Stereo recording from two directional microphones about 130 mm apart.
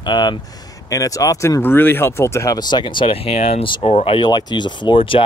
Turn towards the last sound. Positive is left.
turn(degrees=40)  # may be behind; listen again after turning